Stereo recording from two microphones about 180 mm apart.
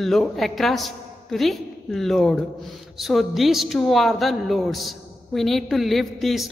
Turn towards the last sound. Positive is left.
turn(degrees=0)  # may be behind; listen again after turning